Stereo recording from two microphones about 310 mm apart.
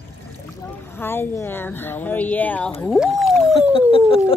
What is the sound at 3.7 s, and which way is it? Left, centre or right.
Speech, centre.